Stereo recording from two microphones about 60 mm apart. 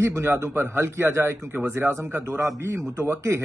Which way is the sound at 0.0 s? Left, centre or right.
Right.